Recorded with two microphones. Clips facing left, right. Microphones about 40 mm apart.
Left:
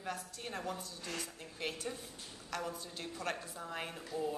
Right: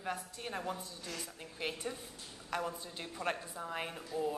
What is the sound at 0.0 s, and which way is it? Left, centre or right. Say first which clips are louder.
A woman's voice: right 2 dB; centre.